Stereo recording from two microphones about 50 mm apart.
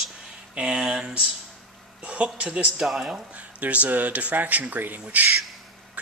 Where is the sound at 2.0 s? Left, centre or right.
Right.